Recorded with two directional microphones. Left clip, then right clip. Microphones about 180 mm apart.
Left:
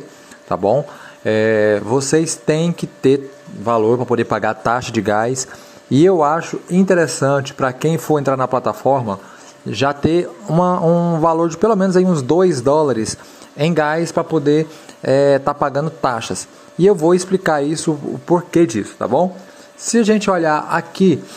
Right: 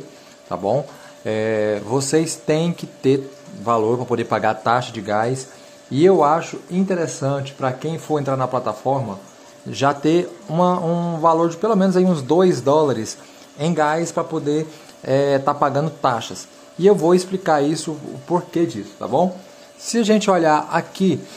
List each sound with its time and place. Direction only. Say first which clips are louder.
0.5 s a man's voice: left 5 dB; 25° left (ahead or behind)
10.9 s mantra: left 7 dB; 15° left (ahead or behind)
11.1 s a man's voice: left 1 dB; 30° left (ahead or behind)